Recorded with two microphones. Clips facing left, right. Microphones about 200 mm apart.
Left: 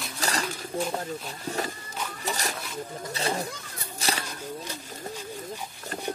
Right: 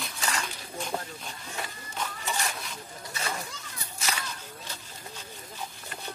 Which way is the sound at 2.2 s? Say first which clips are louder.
Left 2 dB; 35° left (ahead or behind).